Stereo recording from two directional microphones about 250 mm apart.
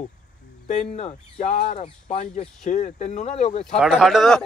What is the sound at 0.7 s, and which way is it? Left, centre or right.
Speech, left.